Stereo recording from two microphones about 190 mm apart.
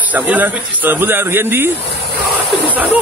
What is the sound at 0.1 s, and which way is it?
Speech, 10° right (ahead or behind).